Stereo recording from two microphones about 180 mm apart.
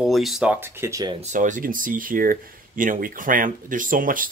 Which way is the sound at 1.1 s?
40° right (ahead or behind).